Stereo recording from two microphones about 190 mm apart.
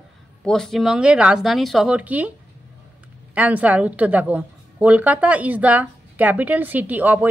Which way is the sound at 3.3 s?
10° right (ahead or behind).